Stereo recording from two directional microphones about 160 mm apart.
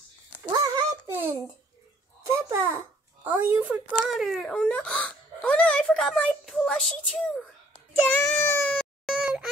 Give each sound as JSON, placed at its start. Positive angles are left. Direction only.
{"t": 0.4, "sound": "a sound", "side_deg": -20}
{"t": 2.2, "sound": "a child's voice", "side_deg": -15}
{"t": 8.7, "sound": "baby cry", "side_deg": 0}